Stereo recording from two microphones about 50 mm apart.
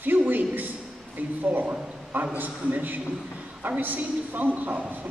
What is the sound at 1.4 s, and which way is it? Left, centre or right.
A man's voice, right.